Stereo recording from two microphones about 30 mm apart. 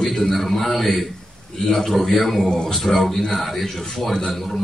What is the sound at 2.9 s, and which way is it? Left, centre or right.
Speech, centre.